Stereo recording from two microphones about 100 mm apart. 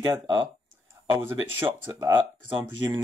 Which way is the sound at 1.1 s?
25° right (ahead or behind).